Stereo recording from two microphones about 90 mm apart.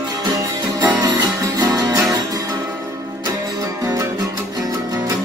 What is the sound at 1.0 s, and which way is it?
Music, 40° right (ahead or behind).